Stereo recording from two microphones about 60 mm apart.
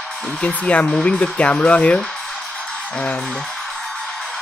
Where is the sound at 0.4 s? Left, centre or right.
Left.